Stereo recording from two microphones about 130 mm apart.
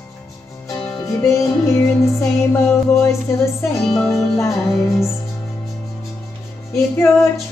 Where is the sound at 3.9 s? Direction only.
Centre (ahead or behind).